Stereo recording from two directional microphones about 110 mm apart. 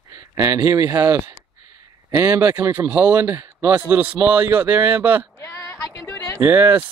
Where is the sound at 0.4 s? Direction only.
30° right (ahead or behind).